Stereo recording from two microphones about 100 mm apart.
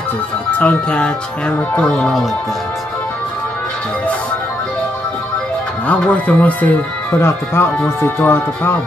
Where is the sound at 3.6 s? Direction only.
10° left (ahead or behind).